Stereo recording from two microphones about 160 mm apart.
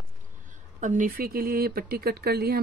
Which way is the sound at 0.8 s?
55° right (ahead or behind).